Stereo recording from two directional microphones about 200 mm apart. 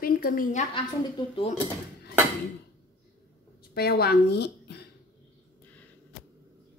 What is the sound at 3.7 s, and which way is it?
A woman's voice, 50° left (ahead or behind).